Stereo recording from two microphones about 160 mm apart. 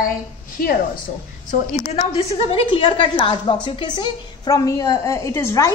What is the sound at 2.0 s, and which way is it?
A woman's voice, 35° left (ahead or behind).